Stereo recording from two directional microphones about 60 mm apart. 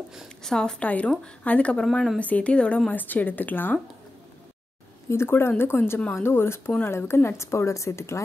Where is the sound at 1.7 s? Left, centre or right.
Centre.